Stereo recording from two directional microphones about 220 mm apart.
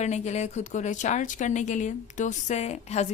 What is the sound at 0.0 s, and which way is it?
A woman's voice, 30° left (ahead or behind).